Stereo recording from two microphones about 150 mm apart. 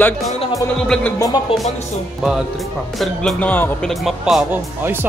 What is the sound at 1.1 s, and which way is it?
Speech, 25° left (ahead or behind).